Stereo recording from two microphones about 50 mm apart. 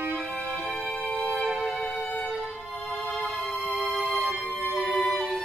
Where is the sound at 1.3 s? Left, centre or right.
Centre.